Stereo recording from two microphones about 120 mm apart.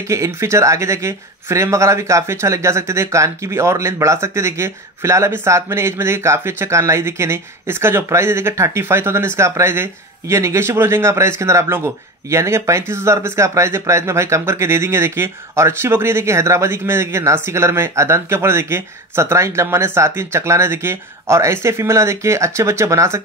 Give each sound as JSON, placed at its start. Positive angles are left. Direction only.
{"t": 0.1, "sound": "speech", "side_deg": -25}